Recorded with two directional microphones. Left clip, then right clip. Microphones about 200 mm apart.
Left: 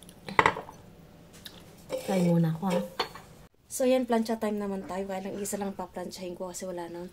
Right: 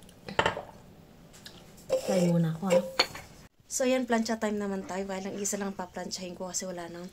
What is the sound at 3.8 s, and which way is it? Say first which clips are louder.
A woman's voice: left 2 dB; 5° left (ahead or behind).